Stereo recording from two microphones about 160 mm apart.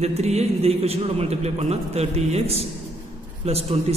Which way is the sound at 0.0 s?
40° right (ahead or behind).